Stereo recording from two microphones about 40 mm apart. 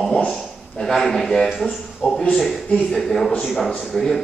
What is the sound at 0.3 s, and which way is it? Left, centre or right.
A man's voice, centre.